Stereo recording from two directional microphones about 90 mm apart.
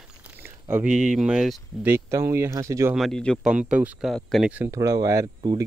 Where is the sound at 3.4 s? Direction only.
10° right (ahead or behind).